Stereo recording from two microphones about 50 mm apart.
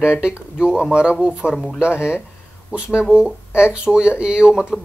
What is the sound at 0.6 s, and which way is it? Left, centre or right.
Speech, centre.